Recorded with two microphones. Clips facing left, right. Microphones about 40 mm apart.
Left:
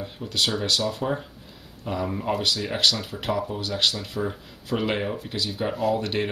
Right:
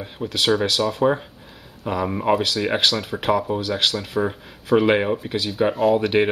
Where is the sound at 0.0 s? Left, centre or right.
Right.